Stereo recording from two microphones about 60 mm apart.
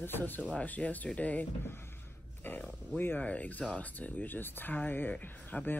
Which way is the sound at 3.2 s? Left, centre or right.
Left.